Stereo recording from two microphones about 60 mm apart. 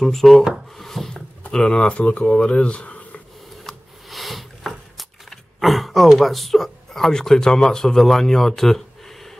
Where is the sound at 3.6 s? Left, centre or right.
Centre.